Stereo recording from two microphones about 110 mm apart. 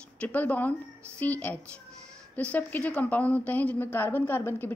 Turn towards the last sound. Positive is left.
turn(degrees=20)  # may be behind; listen again after turning